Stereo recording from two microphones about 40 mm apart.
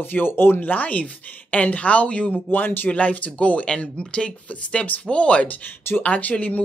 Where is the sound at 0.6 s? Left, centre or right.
Left.